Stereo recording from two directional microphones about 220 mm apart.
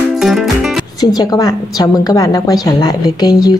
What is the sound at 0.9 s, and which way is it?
A woman's voice, 15° left (ahead or behind).